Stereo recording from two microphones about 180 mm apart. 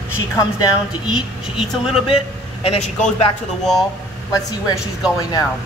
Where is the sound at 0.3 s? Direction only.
20° left (ahead or behind).